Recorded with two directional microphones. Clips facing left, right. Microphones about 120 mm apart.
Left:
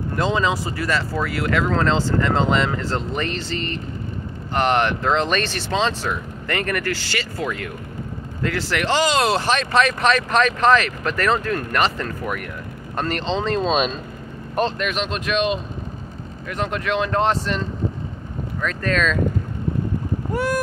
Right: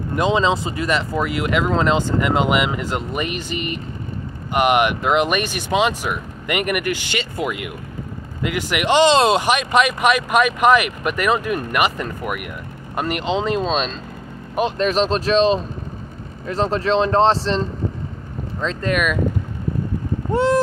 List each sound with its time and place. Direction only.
0.1 s speech: 20° right (ahead or behind)
13.7 s speech: 5° left (ahead or behind)
14.8 s speech: 35° right (ahead or behind); by 19.1 s 15° right (ahead or behind)
20.3 s speech: 25° right (ahead or behind)